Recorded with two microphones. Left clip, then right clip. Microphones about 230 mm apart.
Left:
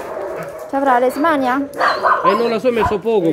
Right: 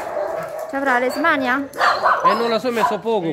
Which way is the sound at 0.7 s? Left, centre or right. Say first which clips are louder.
Left 5 dB; centre.